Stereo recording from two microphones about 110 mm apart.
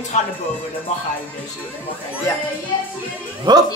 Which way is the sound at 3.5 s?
45° right (ahead or behind).